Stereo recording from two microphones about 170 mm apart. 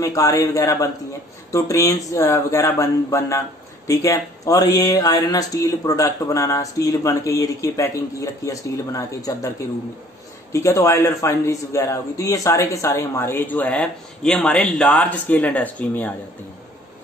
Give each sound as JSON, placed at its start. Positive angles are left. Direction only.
{"t": 0.0, "sound": "speech", "side_deg": 20}
{"t": 10.5, "sound": "a man's voice", "side_deg": 20}